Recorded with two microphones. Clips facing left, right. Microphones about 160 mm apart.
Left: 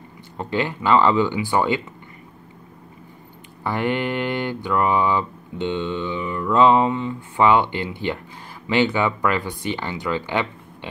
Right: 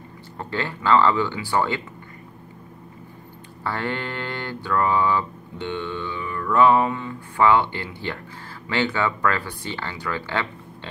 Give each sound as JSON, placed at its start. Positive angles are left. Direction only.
{"t": 0.4, "sound": "speech", "side_deg": 15}
{"t": 3.6, "sound": "speech", "side_deg": 15}